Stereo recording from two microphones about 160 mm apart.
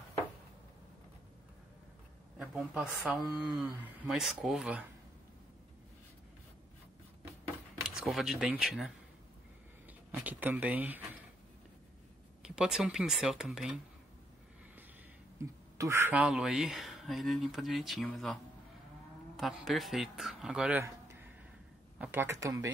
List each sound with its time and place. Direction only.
2.3 s speech: 5° right (ahead or behind)
7.8 s speech: 5° right (ahead or behind)
10.1 s speech: 10° right (ahead or behind)
12.4 s speech: 5° right (ahead or behind)
15.4 s speech: 15° right (ahead or behind)
20.8 s a sound: 15° right (ahead or behind)
21.9 s speech: 10° right (ahead or behind)